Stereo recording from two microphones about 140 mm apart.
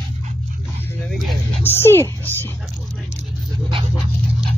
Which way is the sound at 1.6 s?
15° left (ahead or behind).